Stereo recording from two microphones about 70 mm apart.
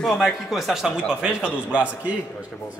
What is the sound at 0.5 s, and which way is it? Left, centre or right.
A man's voice, centre.